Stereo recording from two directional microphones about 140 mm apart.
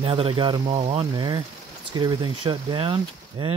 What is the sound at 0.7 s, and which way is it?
Speech, 50° right (ahead or behind).